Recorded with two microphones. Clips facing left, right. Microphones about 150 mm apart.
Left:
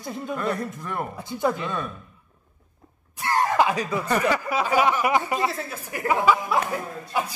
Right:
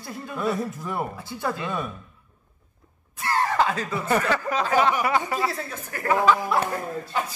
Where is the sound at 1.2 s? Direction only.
15° left (ahead or behind).